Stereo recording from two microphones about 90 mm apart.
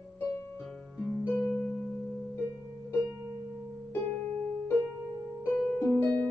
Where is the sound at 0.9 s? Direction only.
5° left (ahead or behind).